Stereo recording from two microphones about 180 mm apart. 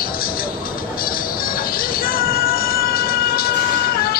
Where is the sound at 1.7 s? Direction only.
55° left (ahead or behind).